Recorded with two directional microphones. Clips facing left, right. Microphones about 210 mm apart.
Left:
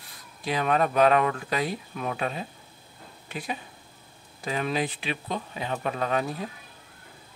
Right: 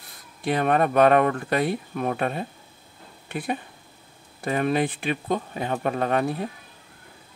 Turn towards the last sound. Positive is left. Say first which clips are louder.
# right 4 dB
turn(degrees=-55)  # may be behind; listen again after turning